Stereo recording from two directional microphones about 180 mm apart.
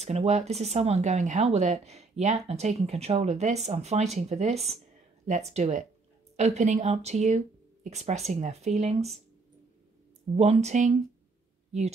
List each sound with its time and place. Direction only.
0.0 s speech: 35° right (ahead or behind)
10.3 s speech: 35° right (ahead or behind)